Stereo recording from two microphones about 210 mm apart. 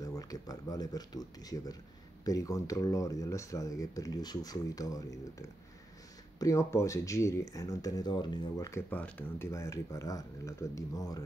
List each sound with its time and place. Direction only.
0.0 s speech: 15° left (ahead or behind)
6.4 s speech: 15° left (ahead or behind)